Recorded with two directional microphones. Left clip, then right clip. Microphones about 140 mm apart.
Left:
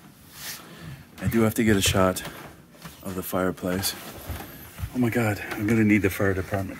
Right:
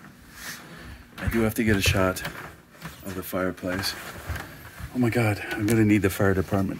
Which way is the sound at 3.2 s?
15° left (ahead or behind).